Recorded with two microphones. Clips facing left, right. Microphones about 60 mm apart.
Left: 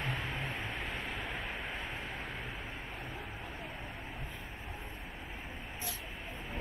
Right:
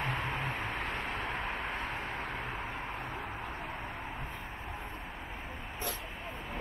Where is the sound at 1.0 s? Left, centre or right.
Right.